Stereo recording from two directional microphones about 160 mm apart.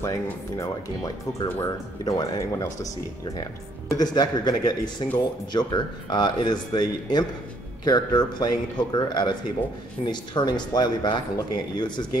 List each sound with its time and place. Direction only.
0.0 s speech: 20° left (ahead or behind)
3.9 s speech: 25° left (ahead or behind)